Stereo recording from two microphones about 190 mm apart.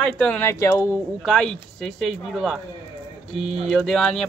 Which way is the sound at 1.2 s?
Centre (ahead or behind).